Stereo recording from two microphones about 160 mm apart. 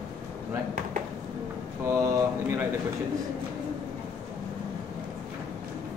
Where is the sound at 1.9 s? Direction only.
20° right (ahead or behind).